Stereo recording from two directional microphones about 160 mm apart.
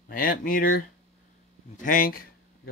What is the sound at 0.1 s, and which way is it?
Speech, 60° left (ahead or behind).